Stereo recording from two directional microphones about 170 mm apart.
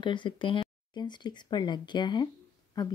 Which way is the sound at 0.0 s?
30° left (ahead or behind).